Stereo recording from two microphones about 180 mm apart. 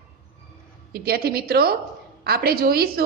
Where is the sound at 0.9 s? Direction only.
60° right (ahead or behind).